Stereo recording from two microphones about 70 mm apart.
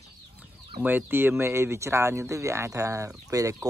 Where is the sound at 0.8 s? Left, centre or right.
Right.